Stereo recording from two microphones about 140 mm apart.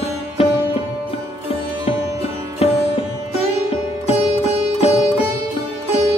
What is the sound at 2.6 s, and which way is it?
Sitar, 45° left (ahead or behind).